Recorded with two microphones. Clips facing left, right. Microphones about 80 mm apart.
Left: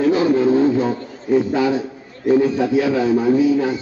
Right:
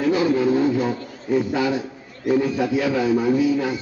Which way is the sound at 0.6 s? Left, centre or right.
Centre.